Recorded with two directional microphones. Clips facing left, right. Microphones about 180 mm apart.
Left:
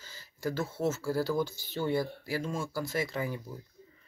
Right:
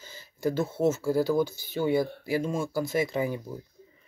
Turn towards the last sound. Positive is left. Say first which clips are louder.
# right 6 dB
turn(degrees=-20)  # may be behind; listen again after turning